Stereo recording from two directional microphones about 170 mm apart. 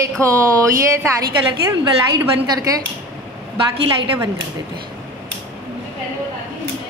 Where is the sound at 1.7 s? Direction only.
20° right (ahead or behind).